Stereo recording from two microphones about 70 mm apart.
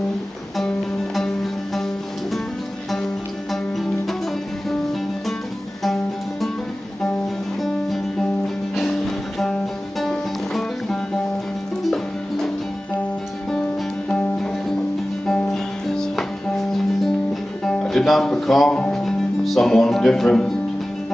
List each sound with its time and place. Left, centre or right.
0.6 s music: centre
8.7 s music: centre
14.0 s music: centre